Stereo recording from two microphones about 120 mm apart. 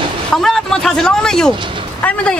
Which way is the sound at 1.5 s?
45° right (ahead or behind).